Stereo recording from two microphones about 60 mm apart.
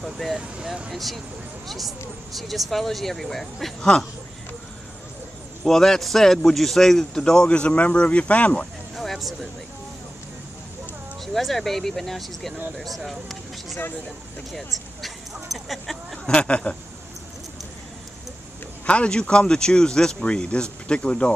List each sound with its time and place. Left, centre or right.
0.0 s speech: centre
0.4 s speech: centre
0.9 s speech: centre
5.6 s a man's voice: centre; by 8.6 s left
8.9 s a sound: centre
11.3 s speech: centre
14.5 s vehicle: centre
15.5 s a sound: centre
16.3 s speech: centre
18.9 s a man's voice: centre